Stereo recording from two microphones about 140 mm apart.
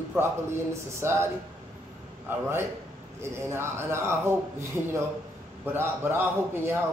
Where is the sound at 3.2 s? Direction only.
20° right (ahead or behind).